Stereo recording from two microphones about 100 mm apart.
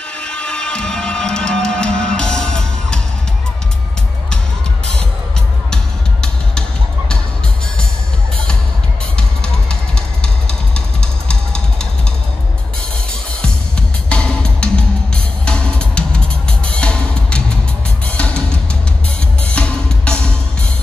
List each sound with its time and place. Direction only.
0.2 s music: 10° left (ahead or behind)
9.1 s music: 10° left (ahead or behind)
13.4 s music: 10° left (ahead or behind)
19.5 s music: 10° left (ahead or behind)